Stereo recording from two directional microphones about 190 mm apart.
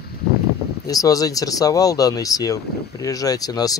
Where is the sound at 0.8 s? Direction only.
20° left (ahead or behind).